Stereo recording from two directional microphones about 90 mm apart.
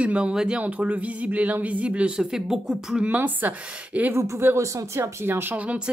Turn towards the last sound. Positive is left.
turn(degrees=-15)  # may be behind; listen again after turning